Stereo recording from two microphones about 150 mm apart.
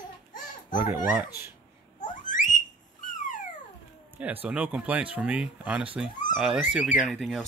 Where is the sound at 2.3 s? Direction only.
60° left (ahead or behind).